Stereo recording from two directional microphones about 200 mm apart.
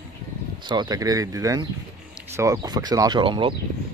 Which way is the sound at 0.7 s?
20° right (ahead or behind).